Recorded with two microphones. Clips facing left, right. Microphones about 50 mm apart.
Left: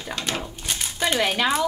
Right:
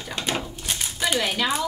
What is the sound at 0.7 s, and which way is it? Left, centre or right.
Crumpling, centre.